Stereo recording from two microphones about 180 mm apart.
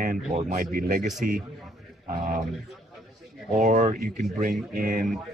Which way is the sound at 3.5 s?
45° right (ahead or behind).